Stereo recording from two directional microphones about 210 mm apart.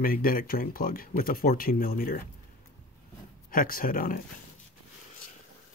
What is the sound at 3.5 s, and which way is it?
Speech, 45° left (ahead or behind).